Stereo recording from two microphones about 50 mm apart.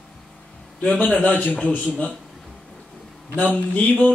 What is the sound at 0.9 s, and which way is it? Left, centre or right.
Speech, left.